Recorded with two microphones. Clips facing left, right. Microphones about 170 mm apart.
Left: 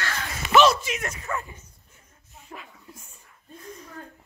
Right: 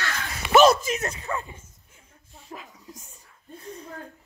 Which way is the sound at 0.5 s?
40° right (ahead or behind).